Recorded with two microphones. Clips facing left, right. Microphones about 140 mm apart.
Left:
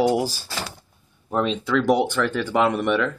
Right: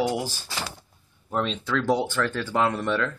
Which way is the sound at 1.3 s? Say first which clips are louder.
Left 5 dB; 15° left (ahead or behind).